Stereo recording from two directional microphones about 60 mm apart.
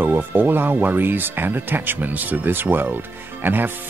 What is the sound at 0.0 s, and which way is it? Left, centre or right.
Speech, right.